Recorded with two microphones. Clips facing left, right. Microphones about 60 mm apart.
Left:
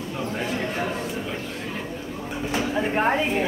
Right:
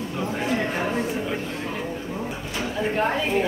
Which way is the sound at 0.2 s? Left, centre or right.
Centre.